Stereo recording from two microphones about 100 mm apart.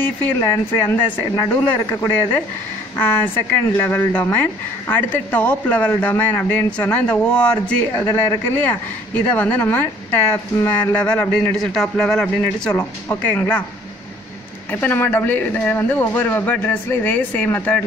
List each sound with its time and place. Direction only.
0.4 s speech: 25° left (ahead or behind)
3.0 s speech: 20° left (ahead or behind)
12.7 s speech: 20° left (ahead or behind)
14.7 s speech: 15° left (ahead or behind)